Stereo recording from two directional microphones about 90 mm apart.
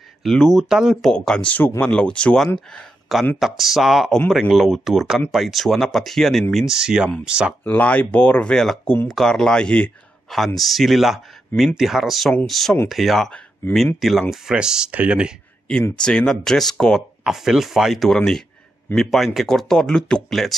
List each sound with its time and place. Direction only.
0.2 s speech: 5° left (ahead or behind)
1.1 s speech: 10° left (ahead or behind); by 7.5 s 10° right (ahead or behind)
7.6 s speech: 15° left (ahead or behind); by 13.3 s centre (ahead or behind)
14.3 s speech: 10° right (ahead or behind)
16.0 s speech: 10° left (ahead or behind)
17.2 s speech: 5° right (ahead or behind)